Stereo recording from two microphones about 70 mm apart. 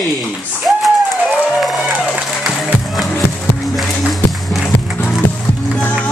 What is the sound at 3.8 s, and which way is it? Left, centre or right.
Music, centre.